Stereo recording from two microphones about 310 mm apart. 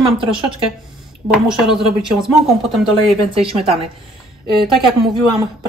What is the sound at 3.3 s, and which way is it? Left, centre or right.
Speech, centre.